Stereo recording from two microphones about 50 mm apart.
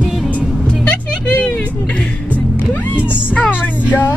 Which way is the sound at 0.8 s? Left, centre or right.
Left.